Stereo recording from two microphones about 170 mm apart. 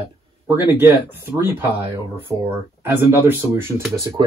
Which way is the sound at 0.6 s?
15° right (ahead or behind).